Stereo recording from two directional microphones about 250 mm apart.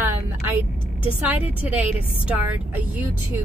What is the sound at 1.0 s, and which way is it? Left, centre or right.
A woman's voice, centre.